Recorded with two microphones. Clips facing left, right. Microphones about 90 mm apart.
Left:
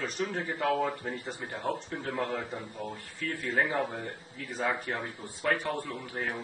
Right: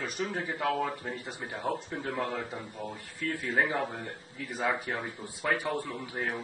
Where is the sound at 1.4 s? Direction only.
10° right (ahead or behind).